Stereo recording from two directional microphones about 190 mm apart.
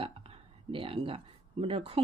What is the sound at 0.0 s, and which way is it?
Speech, 30° right (ahead or behind).